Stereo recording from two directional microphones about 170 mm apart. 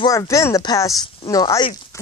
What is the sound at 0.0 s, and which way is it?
Speech, 20° left (ahead or behind).